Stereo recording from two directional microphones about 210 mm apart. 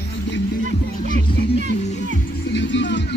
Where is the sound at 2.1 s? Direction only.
60° left (ahead or behind).